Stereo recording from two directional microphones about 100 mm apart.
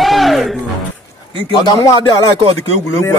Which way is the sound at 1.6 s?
35° left (ahead or behind).